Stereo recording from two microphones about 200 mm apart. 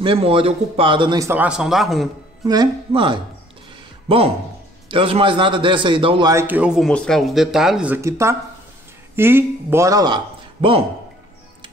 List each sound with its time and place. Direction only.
0.0 s a man's voice: 25° right (ahead or behind); by 2.0 s centre (ahead or behind)
2.4 s a man's voice: 20° right (ahead or behind)
4.8 s a man's voice: 25° right (ahead or behind)
6.3 s speech: 10° right (ahead or behind); by 10.9 s 30° right (ahead or behind)